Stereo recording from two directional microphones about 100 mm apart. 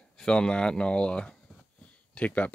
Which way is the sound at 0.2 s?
10° left (ahead or behind).